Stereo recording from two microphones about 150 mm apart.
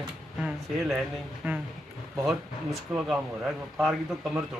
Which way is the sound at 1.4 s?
10° right (ahead or behind).